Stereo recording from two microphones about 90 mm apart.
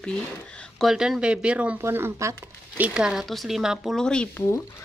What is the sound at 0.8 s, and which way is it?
Speech, 5° right (ahead or behind).